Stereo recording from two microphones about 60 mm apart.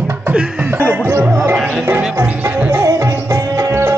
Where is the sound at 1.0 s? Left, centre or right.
Right.